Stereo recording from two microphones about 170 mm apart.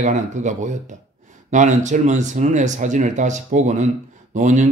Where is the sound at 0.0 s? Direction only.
45° right (ahead or behind).